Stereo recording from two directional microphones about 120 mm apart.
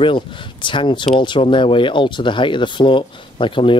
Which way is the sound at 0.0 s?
45° left (ahead or behind).